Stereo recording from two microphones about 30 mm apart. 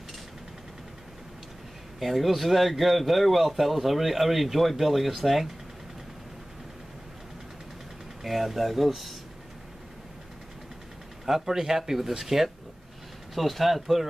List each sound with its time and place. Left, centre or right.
2.0 s a man's voice: centre
8.2 s a man's voice: centre
11.2 s speech: centre
13.3 s a man's voice: centre